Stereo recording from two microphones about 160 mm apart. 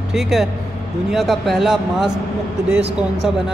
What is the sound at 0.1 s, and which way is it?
Speech, 5° right (ahead or behind).